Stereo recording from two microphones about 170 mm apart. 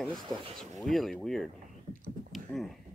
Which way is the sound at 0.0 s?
Centre (ahead or behind).